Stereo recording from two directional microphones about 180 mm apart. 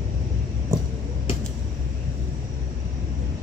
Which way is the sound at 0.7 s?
20° right (ahead or behind).